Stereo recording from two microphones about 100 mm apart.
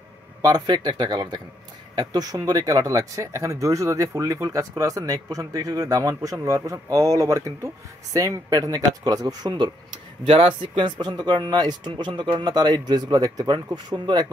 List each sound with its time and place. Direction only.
0.7 s speech: 45° right (ahead or behind)
10.2 s speech: 60° right (ahead or behind)